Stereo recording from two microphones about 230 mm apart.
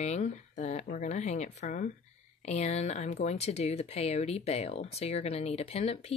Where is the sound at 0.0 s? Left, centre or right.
Left.